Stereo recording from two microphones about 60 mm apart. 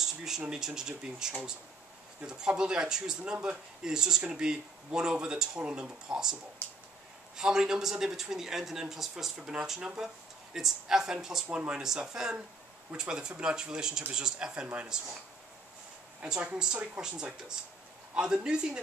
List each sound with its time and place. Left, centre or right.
0.0 s speech: centre
7.3 s speech: centre
11.4 s speech: right
11.7 s speech: centre
16.3 s speech: right